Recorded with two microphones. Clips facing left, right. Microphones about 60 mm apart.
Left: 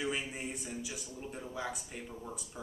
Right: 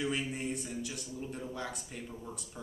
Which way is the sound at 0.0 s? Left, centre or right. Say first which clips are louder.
Right 2 dB; centre.